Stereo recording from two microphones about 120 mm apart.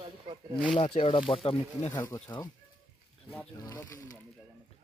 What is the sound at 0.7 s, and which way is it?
Speech, 50° left (ahead or behind).